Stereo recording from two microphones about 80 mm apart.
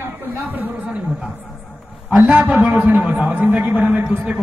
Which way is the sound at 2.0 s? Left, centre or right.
Right.